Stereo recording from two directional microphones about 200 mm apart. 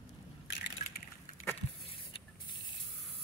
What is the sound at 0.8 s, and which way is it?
Crushing, 35° left (ahead or behind).